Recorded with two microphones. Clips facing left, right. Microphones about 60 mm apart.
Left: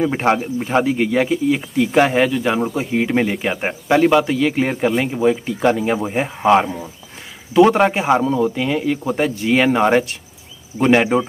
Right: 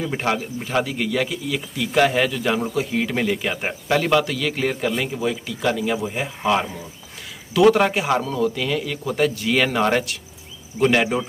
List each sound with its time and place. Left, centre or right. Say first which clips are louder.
0.0 s speech: left 6 dB; left